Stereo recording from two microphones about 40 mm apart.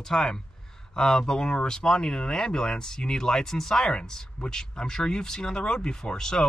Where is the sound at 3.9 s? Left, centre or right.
Left.